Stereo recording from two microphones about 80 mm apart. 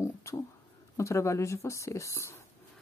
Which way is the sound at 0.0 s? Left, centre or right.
Left.